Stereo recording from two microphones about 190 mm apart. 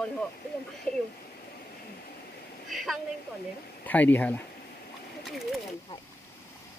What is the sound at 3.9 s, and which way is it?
Speech, 10° left (ahead or behind).